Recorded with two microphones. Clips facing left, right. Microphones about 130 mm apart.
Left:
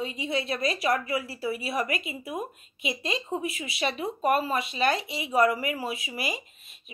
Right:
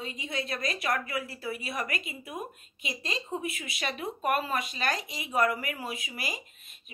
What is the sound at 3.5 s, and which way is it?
A woman's voice, 50° right (ahead or behind).